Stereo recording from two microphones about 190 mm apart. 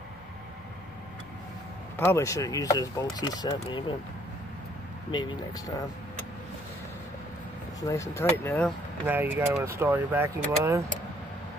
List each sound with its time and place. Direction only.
2.0 s speech: 15° left (ahead or behind)
5.1 s speech: 25° left (ahead or behind)
7.8 s speech: 15° left (ahead or behind)
9.0 s speech: 10° right (ahead or behind)